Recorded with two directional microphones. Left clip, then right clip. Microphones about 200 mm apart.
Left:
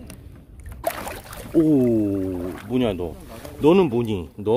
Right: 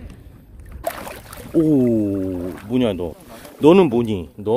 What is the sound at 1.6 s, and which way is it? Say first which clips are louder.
Speech: right 1 dB; 35° right (ahead or behind).